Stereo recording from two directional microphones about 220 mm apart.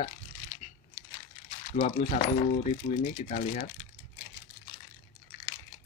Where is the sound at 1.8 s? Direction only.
30° left (ahead or behind).